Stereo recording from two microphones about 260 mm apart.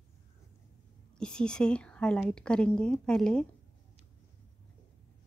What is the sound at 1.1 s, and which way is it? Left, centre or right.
A woman's voice, centre.